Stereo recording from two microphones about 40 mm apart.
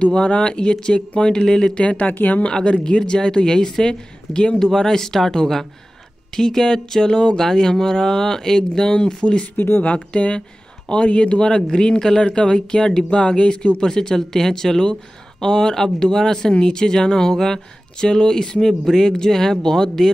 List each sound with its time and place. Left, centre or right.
0.0 s speech: left
1.8 s speech: left
2.4 s speech: left
9.6 s speech: left
9.8 s speech: left; by 20.1 s centre